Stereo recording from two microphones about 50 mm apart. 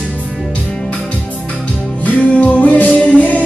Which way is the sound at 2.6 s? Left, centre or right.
Left.